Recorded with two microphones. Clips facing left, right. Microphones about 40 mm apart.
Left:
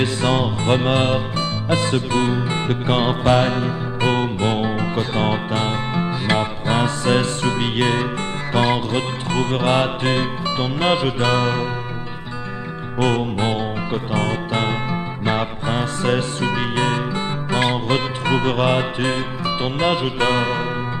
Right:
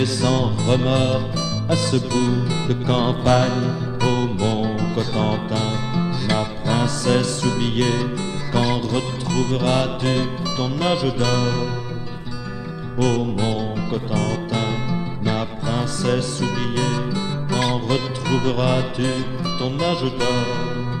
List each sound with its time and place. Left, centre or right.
0.0 s music: left
13.0 s music: left